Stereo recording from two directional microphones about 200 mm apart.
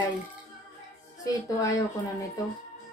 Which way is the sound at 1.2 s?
15° left (ahead or behind).